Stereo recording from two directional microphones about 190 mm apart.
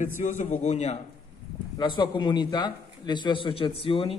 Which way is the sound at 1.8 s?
25° left (ahead or behind).